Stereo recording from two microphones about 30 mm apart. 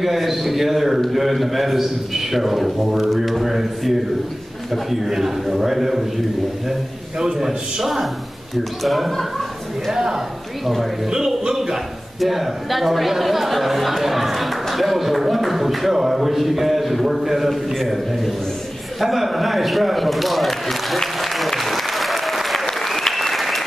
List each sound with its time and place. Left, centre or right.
0.0 s a man's voice: centre
5.0 s a man's voice: centre
7.8 s speech: centre
9.8 s a man's voice: centre
12.2 s speech: centre
21.2 s applause: centre